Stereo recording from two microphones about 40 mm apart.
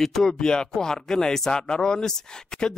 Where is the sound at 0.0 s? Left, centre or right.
Centre.